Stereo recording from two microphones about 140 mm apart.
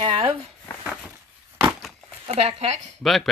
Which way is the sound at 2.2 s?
50° right (ahead or behind).